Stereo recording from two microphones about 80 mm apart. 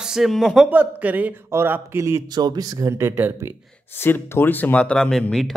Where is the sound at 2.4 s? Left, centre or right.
Right.